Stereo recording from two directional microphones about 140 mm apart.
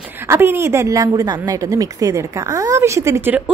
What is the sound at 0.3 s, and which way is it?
A woman's voice, 15° right (ahead or behind).